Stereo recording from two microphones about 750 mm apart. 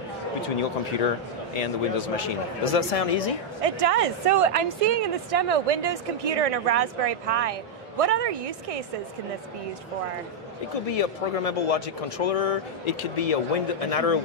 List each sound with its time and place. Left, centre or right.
1.6 s speech: left
3.6 s a woman's voice: right
10.9 s speech: left